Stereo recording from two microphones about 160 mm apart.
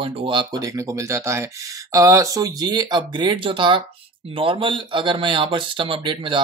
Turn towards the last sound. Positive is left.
turn(degrees=-30)  # may be behind; listen again after turning